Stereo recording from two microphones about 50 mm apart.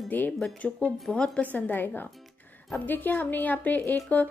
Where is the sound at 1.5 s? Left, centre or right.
Left.